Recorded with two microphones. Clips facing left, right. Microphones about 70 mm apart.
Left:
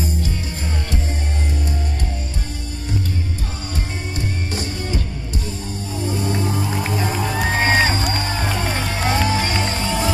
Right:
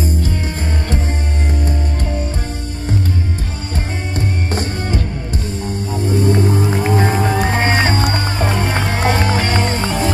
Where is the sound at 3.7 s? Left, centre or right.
Right.